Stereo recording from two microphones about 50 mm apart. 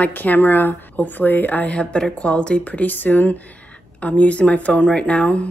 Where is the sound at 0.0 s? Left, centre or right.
Left.